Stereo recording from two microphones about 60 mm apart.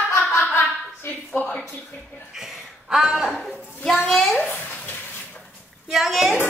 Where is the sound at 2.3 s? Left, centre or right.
Centre.